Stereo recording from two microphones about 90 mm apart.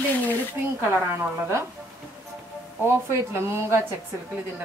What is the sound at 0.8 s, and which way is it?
Speech, 25° right (ahead or behind).